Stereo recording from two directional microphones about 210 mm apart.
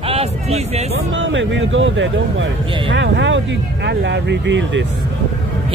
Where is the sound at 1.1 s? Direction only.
60° right (ahead or behind).